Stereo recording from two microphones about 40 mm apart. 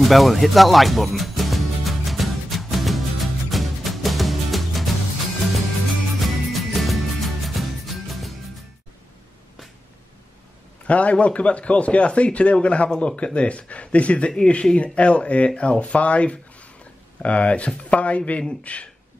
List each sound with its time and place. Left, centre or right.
0.0 s music: centre
10.9 s speech: left